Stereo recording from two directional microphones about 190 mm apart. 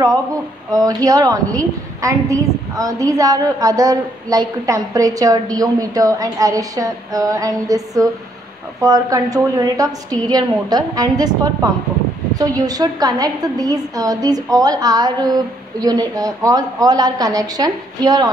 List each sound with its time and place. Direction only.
0.7 s a woman's voice: 20° right (ahead or behind)